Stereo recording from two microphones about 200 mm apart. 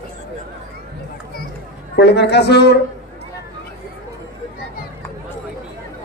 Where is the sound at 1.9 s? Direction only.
55° left (ahead or behind).